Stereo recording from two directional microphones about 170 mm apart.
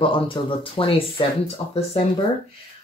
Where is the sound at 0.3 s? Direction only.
30° left (ahead or behind).